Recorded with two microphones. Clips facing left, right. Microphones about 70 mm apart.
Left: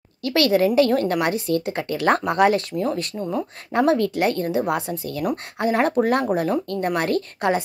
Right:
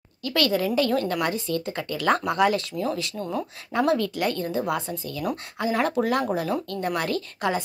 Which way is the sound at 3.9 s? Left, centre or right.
Left.